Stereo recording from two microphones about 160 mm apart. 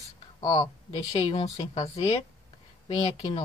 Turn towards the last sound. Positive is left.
turn(degrees=35)  # may be behind; listen again after turning